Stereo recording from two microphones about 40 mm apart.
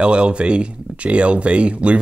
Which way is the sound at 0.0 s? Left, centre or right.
Right.